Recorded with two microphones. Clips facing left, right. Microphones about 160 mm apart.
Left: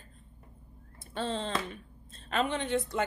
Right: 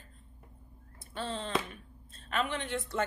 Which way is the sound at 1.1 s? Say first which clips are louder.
Left 2 dB; 25° left (ahead or behind).